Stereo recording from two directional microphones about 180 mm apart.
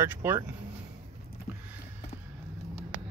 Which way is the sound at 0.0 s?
10° right (ahead or behind).